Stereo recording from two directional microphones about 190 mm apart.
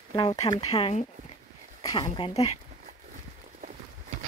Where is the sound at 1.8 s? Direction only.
20° left (ahead or behind).